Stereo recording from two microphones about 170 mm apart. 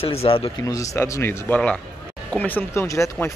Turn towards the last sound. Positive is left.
turn(degrees=15)  # may be behind; listen again after turning